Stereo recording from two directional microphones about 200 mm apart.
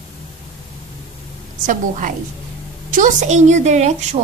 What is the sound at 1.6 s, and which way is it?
Speech, 40° right (ahead or behind).